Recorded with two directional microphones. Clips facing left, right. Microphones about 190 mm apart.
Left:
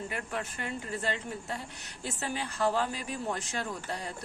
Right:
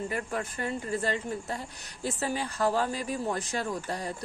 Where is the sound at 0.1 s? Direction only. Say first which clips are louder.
Right 4 dB; 35° right (ahead or behind).